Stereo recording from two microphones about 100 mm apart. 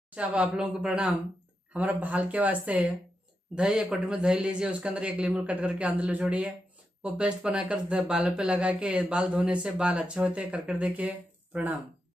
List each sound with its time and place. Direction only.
0.1 s speech: 10° right (ahead or behind)